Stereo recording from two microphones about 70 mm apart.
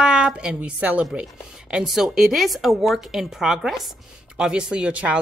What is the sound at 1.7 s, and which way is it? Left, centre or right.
A woman's voice, centre.